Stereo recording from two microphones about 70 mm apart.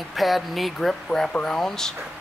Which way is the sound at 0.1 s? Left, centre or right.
Centre.